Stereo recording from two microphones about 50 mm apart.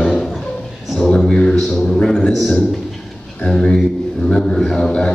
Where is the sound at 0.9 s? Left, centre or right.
Centre.